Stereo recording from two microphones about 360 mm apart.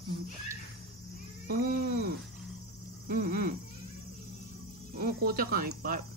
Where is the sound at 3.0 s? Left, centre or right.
Right.